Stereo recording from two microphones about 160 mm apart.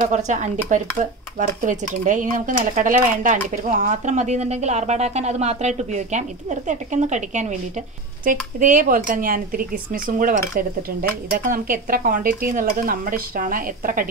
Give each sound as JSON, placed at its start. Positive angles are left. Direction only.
{"t": 0.0, "sound": "speech", "side_deg": -50}